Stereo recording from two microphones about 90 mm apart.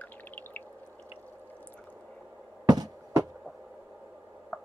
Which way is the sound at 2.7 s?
45° right (ahead or behind).